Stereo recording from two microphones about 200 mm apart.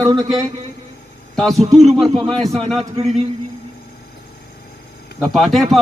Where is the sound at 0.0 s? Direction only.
20° right (ahead or behind).